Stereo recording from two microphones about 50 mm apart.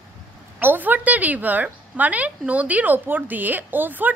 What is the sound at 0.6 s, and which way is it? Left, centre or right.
A woman's voice, right.